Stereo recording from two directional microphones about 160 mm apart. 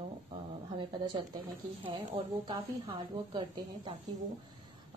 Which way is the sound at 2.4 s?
30° right (ahead or behind).